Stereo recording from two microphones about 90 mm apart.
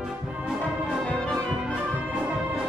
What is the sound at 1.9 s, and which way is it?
Music, 20° right (ahead or behind).